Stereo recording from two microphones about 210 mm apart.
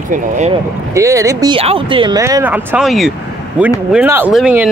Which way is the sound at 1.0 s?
15° right (ahead or behind).